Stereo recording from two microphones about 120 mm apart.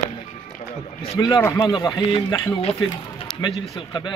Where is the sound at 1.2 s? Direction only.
35° left (ahead or behind).